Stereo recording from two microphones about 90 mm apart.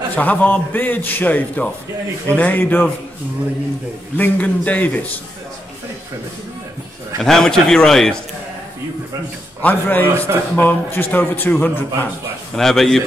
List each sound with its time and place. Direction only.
0.1 s a man's voice: 15° left (ahead or behind)
4.2 s a man's voice: 15° left (ahead or behind)
7.2 s a man's voice: 5° left (ahead or behind)
9.6 s a man's voice: 20° left (ahead or behind)
12.5 s a man's voice: 5° left (ahead or behind)